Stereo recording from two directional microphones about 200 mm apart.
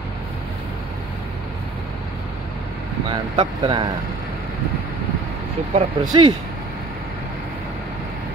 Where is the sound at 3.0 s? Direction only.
25° right (ahead or behind).